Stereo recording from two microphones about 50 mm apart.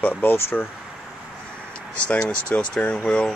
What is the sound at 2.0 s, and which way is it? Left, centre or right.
Speech, left.